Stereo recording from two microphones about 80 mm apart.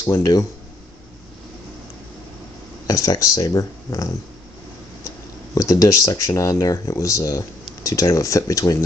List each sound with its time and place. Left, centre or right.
0.0 s speech: left
2.9 s speech: left
5.5 s speech: left